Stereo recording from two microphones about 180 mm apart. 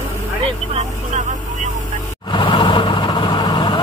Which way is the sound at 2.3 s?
25° left (ahead or behind).